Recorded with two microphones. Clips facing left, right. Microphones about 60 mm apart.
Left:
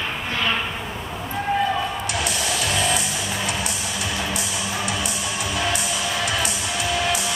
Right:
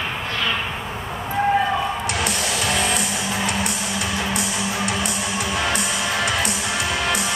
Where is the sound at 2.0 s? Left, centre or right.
Right.